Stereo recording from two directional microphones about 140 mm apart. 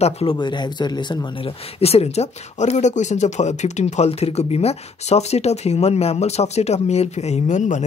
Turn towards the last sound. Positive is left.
turn(degrees=60)  # may be behind; listen again after turning